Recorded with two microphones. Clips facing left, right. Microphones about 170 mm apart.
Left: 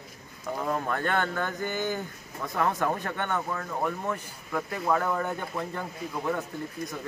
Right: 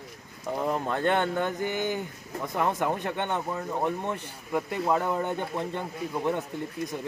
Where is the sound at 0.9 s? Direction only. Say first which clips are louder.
Right 3 dB; 20° right (ahead or behind).